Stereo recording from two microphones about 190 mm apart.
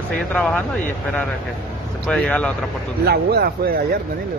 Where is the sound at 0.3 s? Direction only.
5° left (ahead or behind).